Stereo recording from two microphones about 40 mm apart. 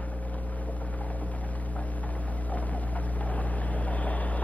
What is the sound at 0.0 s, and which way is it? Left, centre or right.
Boat, left.